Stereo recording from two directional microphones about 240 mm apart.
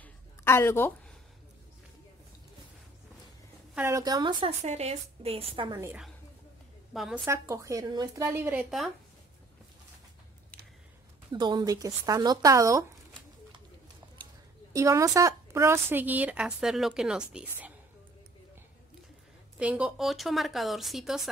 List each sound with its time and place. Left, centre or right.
0.0 s a sound: centre
3.7 s a woman's voice: centre
7.4 s a woman's voice: centre
11.3 s speech: centre
14.7 s a woman's voice: centre
19.6 s speech: centre